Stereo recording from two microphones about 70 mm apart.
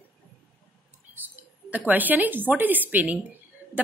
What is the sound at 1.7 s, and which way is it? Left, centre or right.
Speech, right.